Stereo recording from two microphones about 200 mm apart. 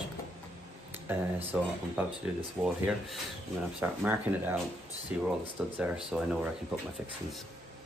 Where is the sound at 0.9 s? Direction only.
10° right (ahead or behind).